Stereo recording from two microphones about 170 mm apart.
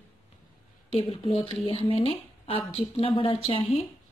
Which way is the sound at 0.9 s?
35° left (ahead or behind).